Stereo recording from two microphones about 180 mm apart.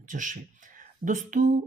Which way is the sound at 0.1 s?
45° right (ahead or behind).